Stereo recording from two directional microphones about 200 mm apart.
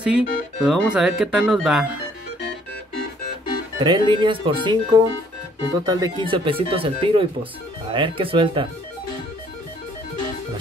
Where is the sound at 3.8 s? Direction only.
20° right (ahead or behind).